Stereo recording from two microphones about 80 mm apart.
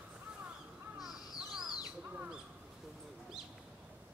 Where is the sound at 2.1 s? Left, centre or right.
Centre.